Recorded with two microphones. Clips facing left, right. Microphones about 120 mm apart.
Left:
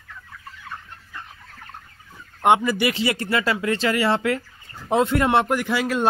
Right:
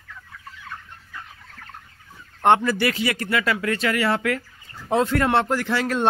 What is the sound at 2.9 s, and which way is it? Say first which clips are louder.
A man's voice: left 1 dB; 25° left (ahead or behind).